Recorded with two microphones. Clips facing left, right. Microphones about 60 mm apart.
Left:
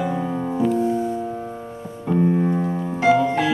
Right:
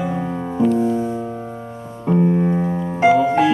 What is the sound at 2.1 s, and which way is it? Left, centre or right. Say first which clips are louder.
Music: right 2 dB; centre.